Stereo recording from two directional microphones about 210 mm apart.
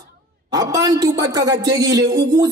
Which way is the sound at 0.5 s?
20° right (ahead or behind).